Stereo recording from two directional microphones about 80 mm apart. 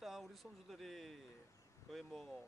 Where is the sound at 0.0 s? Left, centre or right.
Centre.